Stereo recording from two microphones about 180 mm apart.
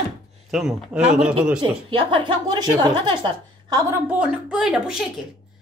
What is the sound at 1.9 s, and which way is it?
A woman's voice, 30° right (ahead or behind).